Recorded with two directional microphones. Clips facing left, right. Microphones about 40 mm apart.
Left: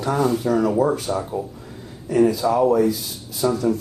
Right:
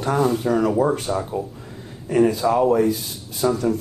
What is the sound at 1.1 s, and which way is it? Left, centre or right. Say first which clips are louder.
Speech: even; centre.